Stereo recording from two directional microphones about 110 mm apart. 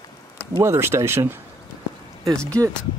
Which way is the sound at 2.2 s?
5° left (ahead or behind).